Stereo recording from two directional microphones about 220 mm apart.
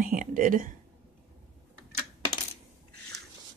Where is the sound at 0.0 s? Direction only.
40° right (ahead or behind).